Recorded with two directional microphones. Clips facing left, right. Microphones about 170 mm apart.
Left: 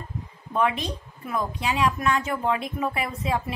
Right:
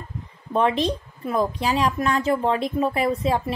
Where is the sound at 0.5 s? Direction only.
30° right (ahead or behind).